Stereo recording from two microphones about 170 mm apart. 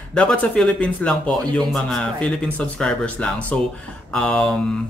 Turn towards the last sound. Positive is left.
turn(degrees=5)  # may be behind; listen again after turning